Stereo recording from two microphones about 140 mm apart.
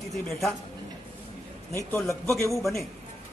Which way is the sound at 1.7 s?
15° left (ahead or behind).